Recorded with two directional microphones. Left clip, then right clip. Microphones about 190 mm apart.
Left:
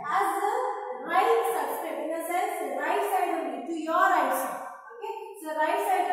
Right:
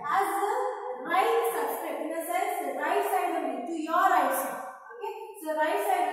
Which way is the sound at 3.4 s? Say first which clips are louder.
Even; 15° right (ahead or behind).